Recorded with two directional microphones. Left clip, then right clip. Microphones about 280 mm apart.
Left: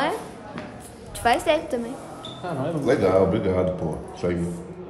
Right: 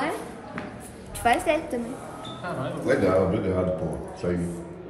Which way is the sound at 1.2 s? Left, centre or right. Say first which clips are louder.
Left 2 dB; centre.